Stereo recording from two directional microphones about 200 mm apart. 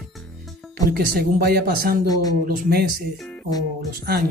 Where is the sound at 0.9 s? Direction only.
50° right (ahead or behind).